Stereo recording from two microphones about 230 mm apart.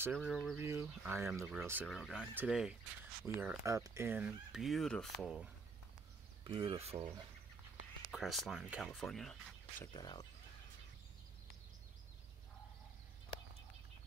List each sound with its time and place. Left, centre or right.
0.0 s speech: centre
6.4 s speech: right
8.1 s speech: centre
9.9 s speech: centre